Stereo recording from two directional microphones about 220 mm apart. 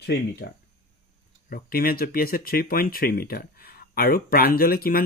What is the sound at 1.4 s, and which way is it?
Speech, 40° left (ahead or behind).